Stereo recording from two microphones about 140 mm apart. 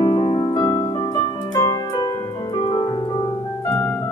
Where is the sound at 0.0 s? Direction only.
30° left (ahead or behind).